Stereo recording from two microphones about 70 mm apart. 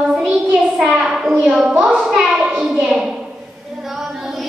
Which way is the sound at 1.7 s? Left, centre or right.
Centre.